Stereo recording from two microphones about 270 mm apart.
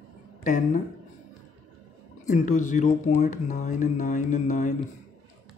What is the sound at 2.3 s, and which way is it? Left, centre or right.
Speech, left.